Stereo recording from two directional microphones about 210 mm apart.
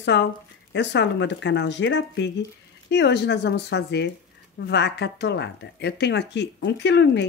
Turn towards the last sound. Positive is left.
turn(degrees=55)  # may be behind; listen again after turning